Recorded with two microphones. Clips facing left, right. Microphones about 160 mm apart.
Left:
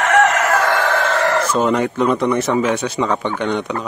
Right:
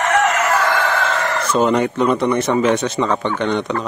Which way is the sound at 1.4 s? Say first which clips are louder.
Right 1 dB; centre (ahead or behind).